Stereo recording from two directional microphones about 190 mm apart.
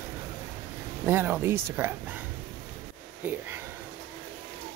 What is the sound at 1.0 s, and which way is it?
Speech, 10° right (ahead or behind).